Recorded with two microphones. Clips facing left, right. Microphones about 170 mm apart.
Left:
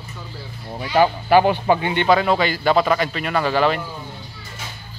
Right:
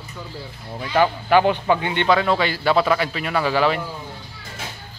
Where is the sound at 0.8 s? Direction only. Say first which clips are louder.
Left 2 dB; 20° left (ahead or behind).